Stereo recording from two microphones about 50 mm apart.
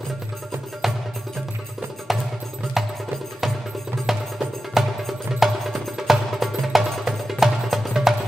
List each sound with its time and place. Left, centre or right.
0.8 s wood block: centre
2.1 s music: centre
4.0 s music: centre
7.9 s music: centre